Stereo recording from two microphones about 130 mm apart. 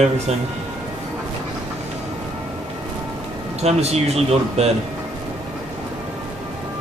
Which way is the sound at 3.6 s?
55° right (ahead or behind).